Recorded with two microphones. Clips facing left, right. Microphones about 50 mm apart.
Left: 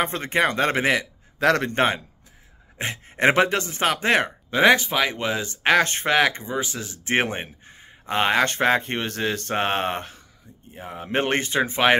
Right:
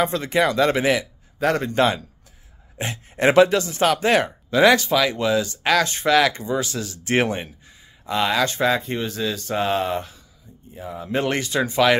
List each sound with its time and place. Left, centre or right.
0.0 s a man's voice: left
1.8 s speech: left